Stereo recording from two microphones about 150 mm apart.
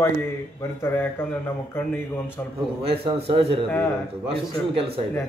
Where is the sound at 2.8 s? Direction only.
40° right (ahead or behind).